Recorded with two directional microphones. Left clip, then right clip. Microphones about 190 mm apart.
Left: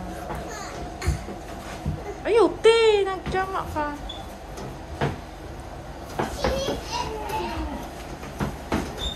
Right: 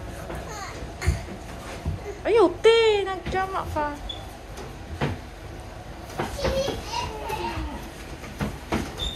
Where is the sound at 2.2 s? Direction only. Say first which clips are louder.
Even; 20° left (ahead or behind).